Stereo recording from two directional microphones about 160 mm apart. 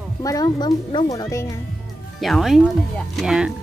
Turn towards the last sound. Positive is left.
turn(degrees=-5)  # may be behind; listen again after turning